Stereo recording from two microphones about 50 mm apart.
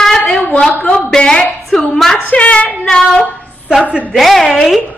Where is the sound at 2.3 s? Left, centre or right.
Left.